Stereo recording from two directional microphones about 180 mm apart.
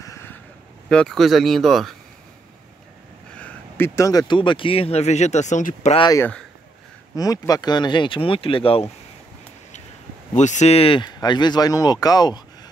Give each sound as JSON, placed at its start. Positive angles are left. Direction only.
{"t": 0.0, "sound": "a sound", "side_deg": 15}
{"t": 0.8, "sound": "speech", "side_deg": 5}
{"t": 3.3, "sound": "speech", "side_deg": 10}
{"t": 5.9, "sound": "speech", "side_deg": 25}
{"t": 10.3, "sound": "speech", "side_deg": 40}